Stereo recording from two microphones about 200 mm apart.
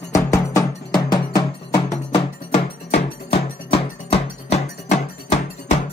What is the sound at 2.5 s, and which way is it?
Music, 30° left (ahead or behind).